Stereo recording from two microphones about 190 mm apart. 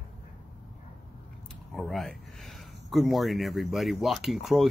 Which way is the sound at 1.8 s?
Centre (ahead or behind).